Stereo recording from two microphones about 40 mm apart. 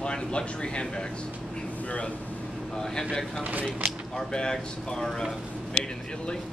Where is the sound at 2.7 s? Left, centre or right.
Centre.